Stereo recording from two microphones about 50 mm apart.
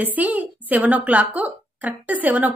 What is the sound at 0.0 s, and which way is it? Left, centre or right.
A woman's voice, right.